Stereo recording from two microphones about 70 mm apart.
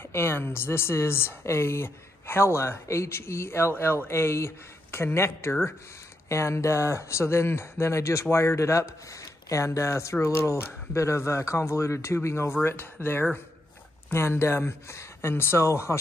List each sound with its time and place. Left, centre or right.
0.1 s a woman's voice: left